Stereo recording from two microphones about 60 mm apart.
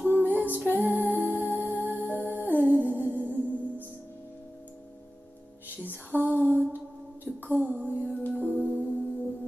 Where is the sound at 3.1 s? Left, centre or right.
Left.